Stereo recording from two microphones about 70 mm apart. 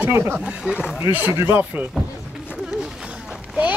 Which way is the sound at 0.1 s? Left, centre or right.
Right.